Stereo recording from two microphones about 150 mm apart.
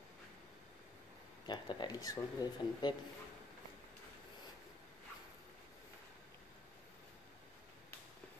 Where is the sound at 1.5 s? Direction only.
30° left (ahead or behind).